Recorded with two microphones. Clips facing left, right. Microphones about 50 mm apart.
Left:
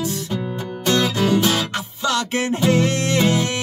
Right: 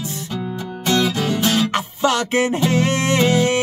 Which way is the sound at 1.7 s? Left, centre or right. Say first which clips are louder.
Right 4 dB; right.